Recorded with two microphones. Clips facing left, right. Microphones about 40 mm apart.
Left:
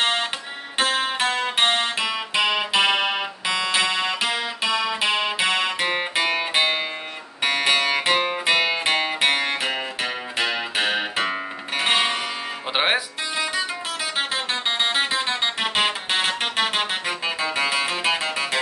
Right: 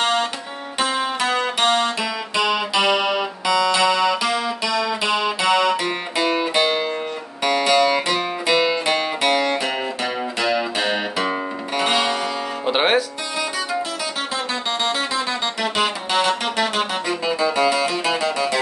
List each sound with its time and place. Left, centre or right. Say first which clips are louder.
0.0 s music: right 3 dB; left
0.7 s music: right 1 dB; left
12.6 s music: right 3 dB; centre
14.3 s music: right 1 dB; left